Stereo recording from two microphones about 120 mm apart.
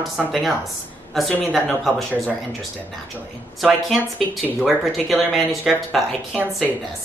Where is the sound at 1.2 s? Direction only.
Centre (ahead or behind).